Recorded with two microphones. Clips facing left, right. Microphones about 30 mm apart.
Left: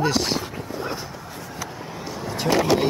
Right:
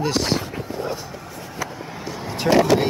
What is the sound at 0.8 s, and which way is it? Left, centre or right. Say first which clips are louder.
Dog: right 1 dB; left.